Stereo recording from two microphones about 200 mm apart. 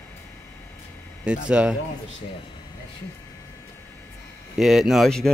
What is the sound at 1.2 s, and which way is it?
Speech, 5° right (ahead or behind).